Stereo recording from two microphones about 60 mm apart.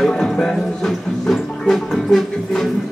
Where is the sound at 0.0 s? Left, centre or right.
Centre.